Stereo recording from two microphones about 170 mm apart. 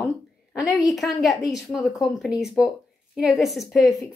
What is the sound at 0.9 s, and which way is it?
A woman's voice, centre (ahead or behind).